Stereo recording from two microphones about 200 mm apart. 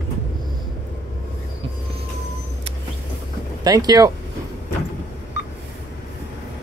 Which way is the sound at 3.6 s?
20° right (ahead or behind).